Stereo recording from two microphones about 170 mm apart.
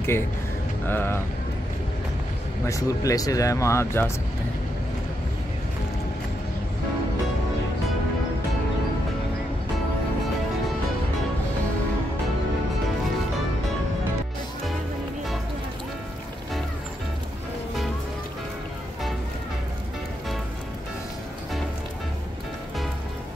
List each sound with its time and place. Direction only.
0.8 s speech: 15° left (ahead or behind)
2.6 s speech: 20° left (ahead or behind)